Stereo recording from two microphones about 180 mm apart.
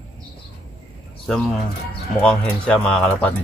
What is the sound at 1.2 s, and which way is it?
Speech, centre (ahead or behind).